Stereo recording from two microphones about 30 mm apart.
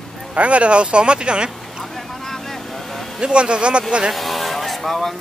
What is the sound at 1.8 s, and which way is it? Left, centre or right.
Vehicle, centre.